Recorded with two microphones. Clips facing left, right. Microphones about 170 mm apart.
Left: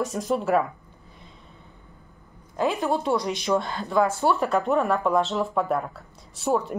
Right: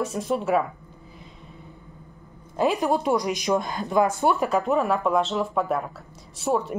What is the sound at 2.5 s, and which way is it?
A woman's voice, 15° right (ahead or behind).